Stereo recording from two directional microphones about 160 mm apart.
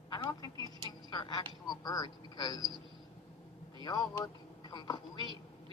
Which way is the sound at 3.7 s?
25° left (ahead or behind).